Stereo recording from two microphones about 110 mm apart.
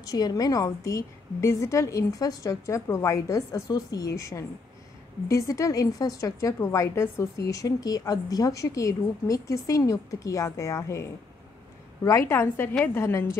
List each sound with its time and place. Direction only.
0.0 s a woman's voice: 35° left (ahead or behind)